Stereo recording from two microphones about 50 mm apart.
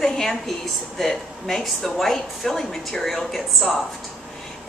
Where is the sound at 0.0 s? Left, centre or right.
Centre.